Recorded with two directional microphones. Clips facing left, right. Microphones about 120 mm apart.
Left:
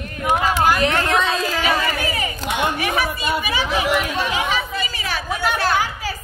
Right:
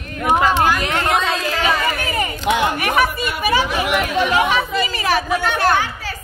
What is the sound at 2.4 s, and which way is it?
Speech, 75° right (ahead or behind).